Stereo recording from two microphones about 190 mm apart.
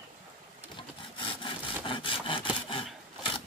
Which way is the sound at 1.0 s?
25° left (ahead or behind).